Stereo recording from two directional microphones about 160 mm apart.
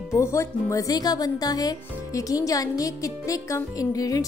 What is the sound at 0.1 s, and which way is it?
Speech, 15° left (ahead or behind).